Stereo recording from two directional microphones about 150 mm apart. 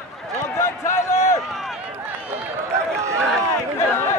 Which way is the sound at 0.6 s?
15° left (ahead or behind).